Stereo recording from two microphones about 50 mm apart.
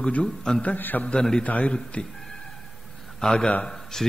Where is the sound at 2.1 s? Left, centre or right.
Centre.